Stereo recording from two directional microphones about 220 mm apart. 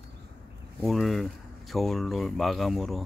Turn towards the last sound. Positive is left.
turn(degrees=0)  # may be behind; listen again after turning